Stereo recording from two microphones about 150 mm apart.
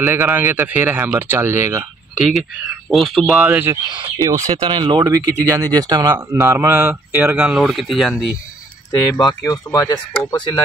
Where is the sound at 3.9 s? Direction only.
35° right (ahead or behind).